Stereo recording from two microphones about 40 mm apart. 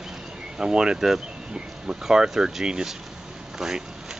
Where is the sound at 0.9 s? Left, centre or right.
Centre.